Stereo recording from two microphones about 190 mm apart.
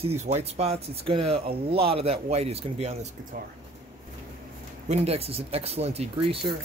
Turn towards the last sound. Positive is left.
turn(degrees=-30)  # may be behind; listen again after turning